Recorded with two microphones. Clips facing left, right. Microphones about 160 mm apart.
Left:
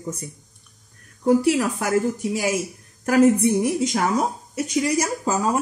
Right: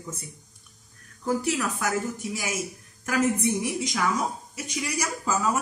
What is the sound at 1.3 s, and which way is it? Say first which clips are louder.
A woman's voice: left 8 dB; 30° left (ahead or behind).